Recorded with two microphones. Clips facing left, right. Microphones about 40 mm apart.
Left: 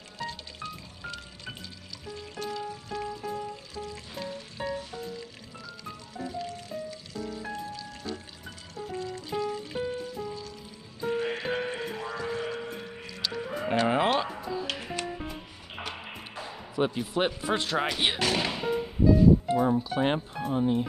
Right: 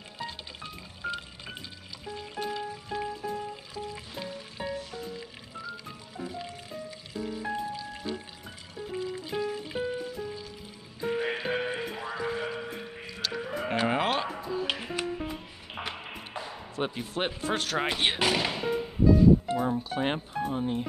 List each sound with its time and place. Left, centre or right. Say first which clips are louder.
0.2 s music: left 2 dB; centre
4.2 s music: left 2 dB; centre
11.0 s music: even; centre
13.5 s chicken: left 2 dB; centre
14.1 s music: left 1 dB; centre
16.8 s speech: left 4 dB; centre
17.9 s thump: right 1 dB; centre
19.4 s speech: left 4 dB; centre